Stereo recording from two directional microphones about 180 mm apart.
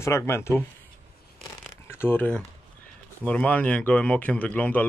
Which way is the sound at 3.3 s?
10° left (ahead or behind).